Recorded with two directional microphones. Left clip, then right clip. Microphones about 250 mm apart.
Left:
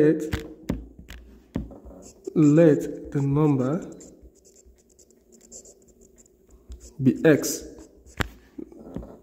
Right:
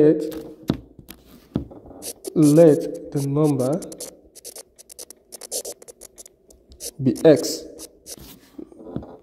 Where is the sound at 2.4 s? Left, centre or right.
Centre.